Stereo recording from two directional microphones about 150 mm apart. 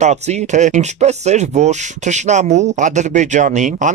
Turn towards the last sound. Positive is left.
turn(degrees=-55)  # may be behind; listen again after turning